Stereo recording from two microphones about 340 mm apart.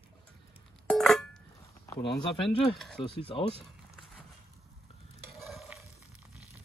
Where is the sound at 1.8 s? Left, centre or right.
Centre.